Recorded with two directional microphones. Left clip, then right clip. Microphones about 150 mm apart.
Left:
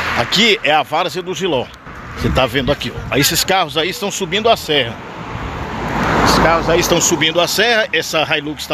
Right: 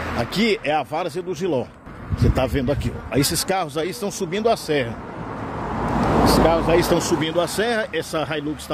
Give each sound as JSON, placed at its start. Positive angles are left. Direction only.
{"t": 0.2, "sound": "speech", "side_deg": 0}
{"t": 5.9, "sound": "vehicle", "side_deg": 55}
{"t": 6.5, "sound": "speech", "side_deg": -25}
{"t": 7.0, "sound": "speech", "side_deg": -10}